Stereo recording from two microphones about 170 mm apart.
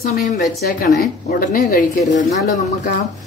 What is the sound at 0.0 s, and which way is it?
Speech, 50° left (ahead or behind).